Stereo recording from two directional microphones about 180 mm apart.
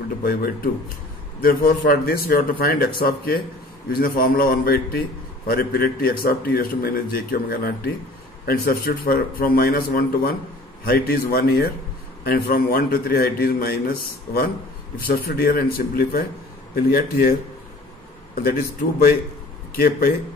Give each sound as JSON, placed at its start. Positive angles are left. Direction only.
{"t": 0.2, "sound": "a man's voice", "side_deg": 55}